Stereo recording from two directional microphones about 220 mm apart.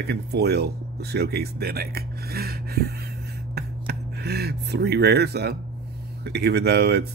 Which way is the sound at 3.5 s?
45° right (ahead or behind).